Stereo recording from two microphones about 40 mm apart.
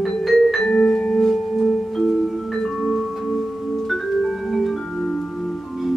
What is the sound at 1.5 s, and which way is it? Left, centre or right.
Music, centre.